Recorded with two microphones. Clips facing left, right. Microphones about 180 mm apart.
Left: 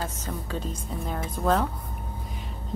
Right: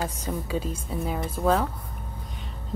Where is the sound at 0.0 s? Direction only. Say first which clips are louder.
Right 3 dB; 10° right (ahead or behind).